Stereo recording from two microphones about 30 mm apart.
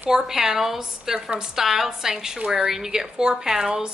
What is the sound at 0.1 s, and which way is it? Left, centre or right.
Speech, right.